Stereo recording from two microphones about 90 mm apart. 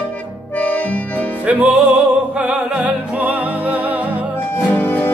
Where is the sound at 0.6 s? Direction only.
15° left (ahead or behind).